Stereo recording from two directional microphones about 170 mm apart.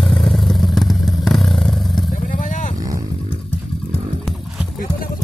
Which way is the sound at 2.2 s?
50° left (ahead or behind).